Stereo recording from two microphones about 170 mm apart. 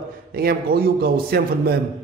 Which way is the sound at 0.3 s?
60° right (ahead or behind).